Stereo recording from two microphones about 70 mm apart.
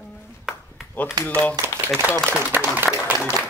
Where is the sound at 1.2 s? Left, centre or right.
Right.